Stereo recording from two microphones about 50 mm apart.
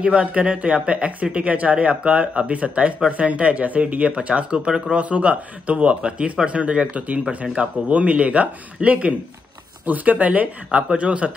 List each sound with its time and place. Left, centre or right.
0.0 s speech: right